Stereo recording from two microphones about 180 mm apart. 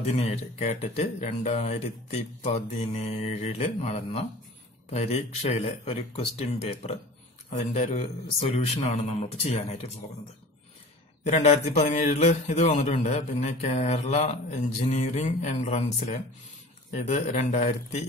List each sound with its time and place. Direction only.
0.0 s a man's voice: 35° left (ahead or behind)
11.2 s a man's voice: 35° left (ahead or behind)